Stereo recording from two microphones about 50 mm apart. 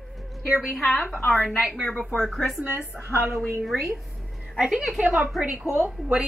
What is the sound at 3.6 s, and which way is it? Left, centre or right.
Speech, centre.